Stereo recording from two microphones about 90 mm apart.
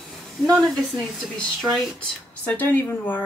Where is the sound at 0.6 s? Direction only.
10° left (ahead or behind).